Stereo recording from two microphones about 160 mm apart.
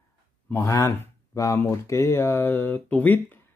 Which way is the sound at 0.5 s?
20° left (ahead or behind).